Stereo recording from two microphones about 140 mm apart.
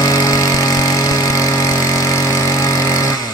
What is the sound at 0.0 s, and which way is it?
Vehicle, 25° left (ahead or behind).